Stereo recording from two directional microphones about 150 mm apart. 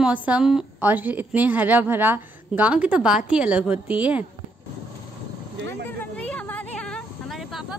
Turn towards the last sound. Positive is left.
turn(degrees=0)  # may be behind; listen again after turning